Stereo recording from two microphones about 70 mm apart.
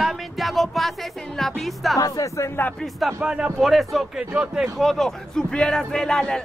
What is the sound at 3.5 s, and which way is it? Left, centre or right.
Speech, centre.